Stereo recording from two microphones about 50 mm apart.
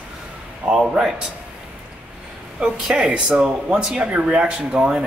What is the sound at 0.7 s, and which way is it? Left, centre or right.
Speech, centre.